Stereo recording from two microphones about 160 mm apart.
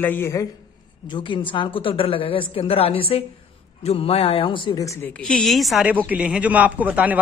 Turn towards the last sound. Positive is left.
turn(degrees=-10)  # may be behind; listen again after turning